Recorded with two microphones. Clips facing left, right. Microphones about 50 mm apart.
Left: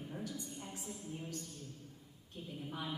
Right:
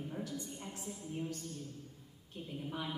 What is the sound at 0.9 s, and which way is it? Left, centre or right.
Speech, right.